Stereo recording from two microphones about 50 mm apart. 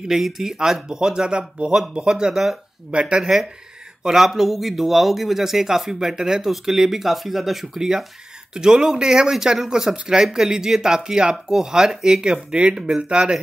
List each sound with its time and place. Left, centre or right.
0.1 s speech: centre
2.9 s speech: right
4.0 s a man's voice: centre